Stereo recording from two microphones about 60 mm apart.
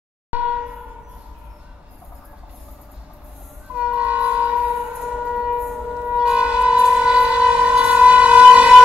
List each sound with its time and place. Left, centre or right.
0.3 s train: right
3.7 s train: right
5.0 s train: centre